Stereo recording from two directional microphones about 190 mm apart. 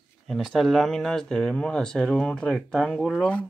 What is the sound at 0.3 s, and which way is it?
Speech, centre (ahead or behind).